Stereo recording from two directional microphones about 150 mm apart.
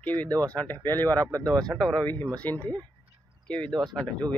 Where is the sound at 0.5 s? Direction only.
10° left (ahead or behind).